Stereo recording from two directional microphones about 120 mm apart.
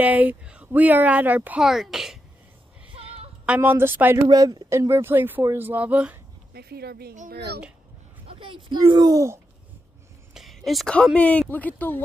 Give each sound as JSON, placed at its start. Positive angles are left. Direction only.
{"t": 0.0, "sound": "speech", "side_deg": -15}
{"t": 1.6, "sound": "speech", "side_deg": -5}
{"t": 2.9, "sound": "a sound", "side_deg": -55}
{"t": 3.4, "sound": "speech", "side_deg": -15}
{"t": 4.3, "sound": "speech", "side_deg": -35}
{"t": 8.3, "sound": "speech", "side_deg": -45}
{"t": 10.3, "sound": "a sound", "side_deg": 0}
{"t": 11.1, "sound": "speech", "side_deg": 10}